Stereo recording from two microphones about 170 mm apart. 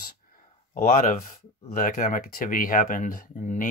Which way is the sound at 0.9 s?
50° left (ahead or behind).